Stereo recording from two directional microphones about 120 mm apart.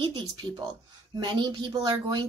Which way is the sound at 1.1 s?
40° right (ahead or behind).